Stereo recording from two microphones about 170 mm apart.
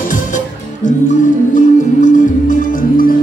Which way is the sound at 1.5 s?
50° left (ahead or behind).